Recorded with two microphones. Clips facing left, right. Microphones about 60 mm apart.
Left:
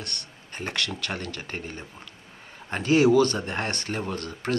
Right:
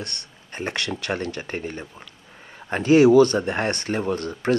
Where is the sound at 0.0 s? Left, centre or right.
Right.